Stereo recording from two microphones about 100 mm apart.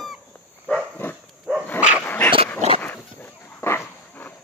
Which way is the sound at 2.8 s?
20° left (ahead or behind).